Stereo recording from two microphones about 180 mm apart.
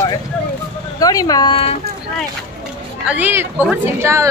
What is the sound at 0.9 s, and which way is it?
Speech, 20° left (ahead or behind).